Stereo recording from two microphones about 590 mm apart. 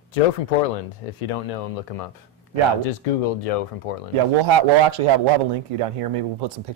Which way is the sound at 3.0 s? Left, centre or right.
Left.